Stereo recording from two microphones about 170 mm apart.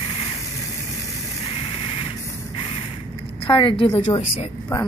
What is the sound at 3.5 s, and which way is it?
A woman's voice, 30° left (ahead or behind).